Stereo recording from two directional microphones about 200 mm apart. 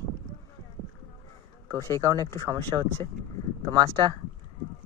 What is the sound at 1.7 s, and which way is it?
Speech, 15° left (ahead or behind).